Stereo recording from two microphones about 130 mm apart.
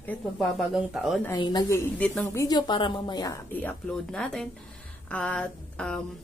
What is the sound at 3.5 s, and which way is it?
Speech, 10° left (ahead or behind).